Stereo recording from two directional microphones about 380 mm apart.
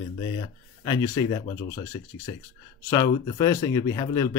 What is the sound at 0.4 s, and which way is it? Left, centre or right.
Speech, centre.